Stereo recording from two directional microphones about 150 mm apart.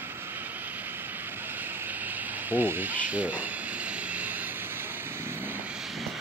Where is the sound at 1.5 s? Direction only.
15° right (ahead or behind).